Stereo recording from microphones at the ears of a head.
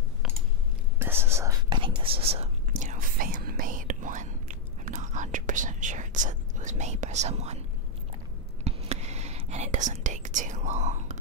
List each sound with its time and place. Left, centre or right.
1.1 s whispering: right
8.6 s whispering: right